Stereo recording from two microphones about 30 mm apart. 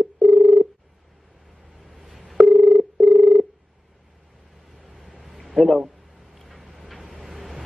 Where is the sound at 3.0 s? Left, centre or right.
Left.